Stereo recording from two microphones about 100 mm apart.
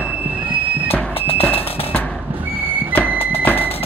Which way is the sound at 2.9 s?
20° left (ahead or behind).